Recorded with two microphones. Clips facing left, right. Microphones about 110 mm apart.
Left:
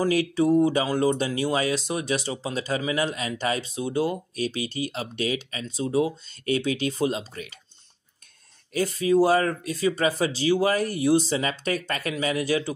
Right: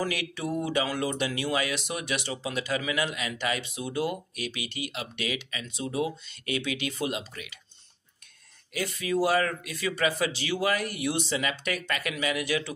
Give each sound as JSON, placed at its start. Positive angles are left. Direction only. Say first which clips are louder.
{"t": 0.0, "sound": "speech", "louder": "left 9 dB", "side_deg": 35}
{"t": 8.7, "sound": "speech", "louder": "left 8 dB", "side_deg": 35}